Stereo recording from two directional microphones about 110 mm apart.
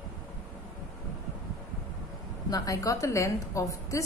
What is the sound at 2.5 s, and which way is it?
A woman's voice, 30° left (ahead or behind).